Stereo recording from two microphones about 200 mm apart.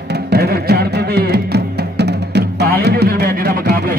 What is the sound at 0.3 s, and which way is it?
Music, 50° right (ahead or behind).